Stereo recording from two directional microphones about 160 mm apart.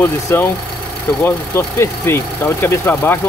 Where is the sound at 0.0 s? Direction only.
15° left (ahead or behind).